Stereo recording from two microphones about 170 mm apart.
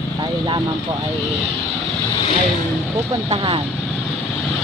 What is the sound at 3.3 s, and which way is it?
Speech, 30° right (ahead or behind).